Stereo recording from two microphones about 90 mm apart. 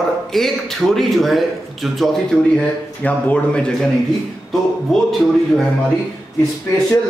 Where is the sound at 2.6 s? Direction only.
15° left (ahead or behind).